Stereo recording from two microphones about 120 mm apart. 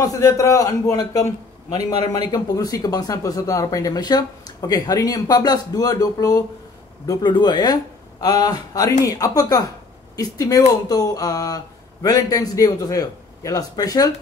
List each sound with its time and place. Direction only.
0.0 s speech: 30° left (ahead or behind)